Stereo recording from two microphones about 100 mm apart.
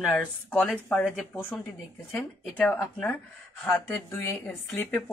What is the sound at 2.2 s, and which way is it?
Speech, 10° left (ahead or behind).